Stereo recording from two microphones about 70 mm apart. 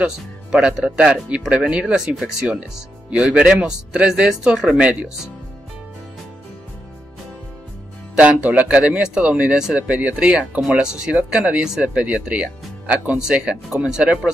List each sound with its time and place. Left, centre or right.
0.0 s speech: centre
8.2 s speech: centre